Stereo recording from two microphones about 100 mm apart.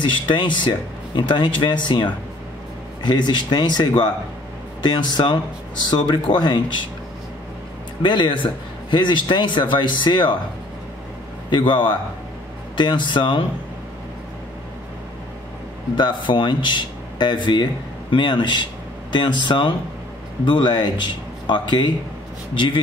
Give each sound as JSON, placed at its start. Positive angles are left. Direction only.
{"t": 0.3, "sound": "speech", "side_deg": 50}
{"t": 8.0, "sound": "speech", "side_deg": 55}
{"t": 11.5, "sound": "speech", "side_deg": 50}
{"t": 16.0, "sound": "speech", "side_deg": 50}